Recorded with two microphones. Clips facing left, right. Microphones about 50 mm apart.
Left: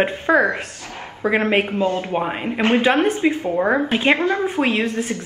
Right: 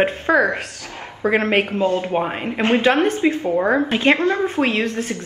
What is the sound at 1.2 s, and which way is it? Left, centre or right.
Speech, centre.